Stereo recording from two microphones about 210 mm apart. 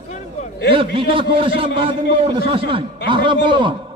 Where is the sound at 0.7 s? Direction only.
25° right (ahead or behind).